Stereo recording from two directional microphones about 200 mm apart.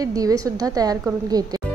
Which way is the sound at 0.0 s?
15° right (ahead or behind).